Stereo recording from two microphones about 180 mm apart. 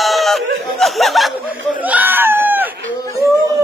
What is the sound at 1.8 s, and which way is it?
Screaming, 10° right (ahead or behind).